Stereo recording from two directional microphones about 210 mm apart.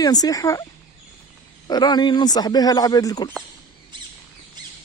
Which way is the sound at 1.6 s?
20° left (ahead or behind).